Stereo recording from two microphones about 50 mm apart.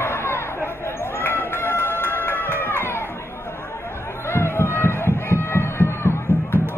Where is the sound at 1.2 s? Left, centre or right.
Left.